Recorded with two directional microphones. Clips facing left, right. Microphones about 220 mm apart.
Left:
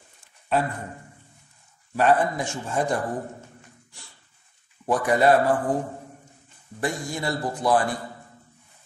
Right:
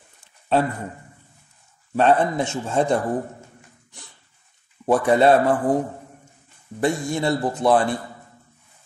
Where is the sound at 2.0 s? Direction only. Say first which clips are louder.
Right 3 dB; 25° right (ahead or behind).